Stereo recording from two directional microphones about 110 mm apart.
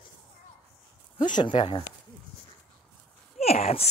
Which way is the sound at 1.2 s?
45° left (ahead or behind).